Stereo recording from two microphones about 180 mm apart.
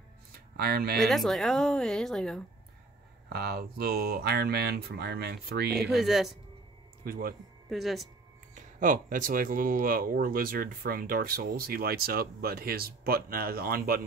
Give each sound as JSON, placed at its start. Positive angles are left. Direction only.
{"t": 0.6, "sound": "speech", "side_deg": -60}
{"t": 0.9, "sound": "speech", "side_deg": 0}
{"t": 3.3, "sound": "speech", "side_deg": -60}
{"t": 5.9, "sound": "speech", "side_deg": 0}
{"t": 7.1, "sound": "speech", "side_deg": -55}
{"t": 7.7, "sound": "speech", "side_deg": 0}
{"t": 8.5, "sound": "speech", "side_deg": -45}